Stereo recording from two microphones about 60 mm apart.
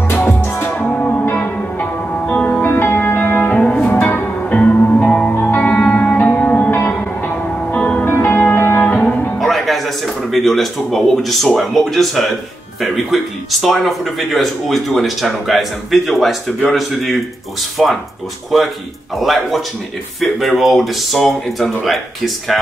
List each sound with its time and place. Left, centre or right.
0.1 s music: left
4.5 s music: left
6.9 s music: left
8.0 s music: left
9.4 s a man's voice: centre